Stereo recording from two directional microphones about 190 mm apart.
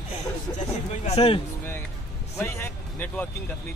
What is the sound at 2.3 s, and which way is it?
Speech, 15° left (ahead or behind).